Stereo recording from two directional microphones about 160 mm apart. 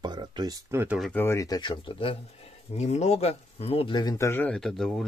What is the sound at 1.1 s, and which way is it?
Speech, 15° left (ahead or behind).